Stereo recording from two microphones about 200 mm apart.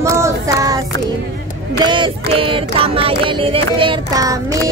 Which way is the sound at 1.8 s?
25° right (ahead or behind).